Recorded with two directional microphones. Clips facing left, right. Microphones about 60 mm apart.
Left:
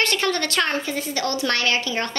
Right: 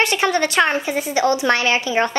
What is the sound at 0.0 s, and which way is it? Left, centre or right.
A woman's voice, centre.